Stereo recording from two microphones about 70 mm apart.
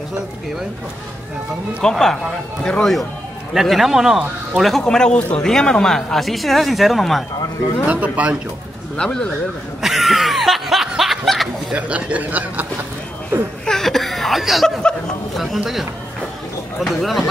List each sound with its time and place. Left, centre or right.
1.8 s speech: centre
4.8 s speech: centre
7.8 s speech: right
8.9 s speech: centre
9.8 s snicker: centre
11.7 s speech: right
13.3 s speech: right
13.7 s chuckle: centre
15.3 s speech: centre
16.8 s speech: centre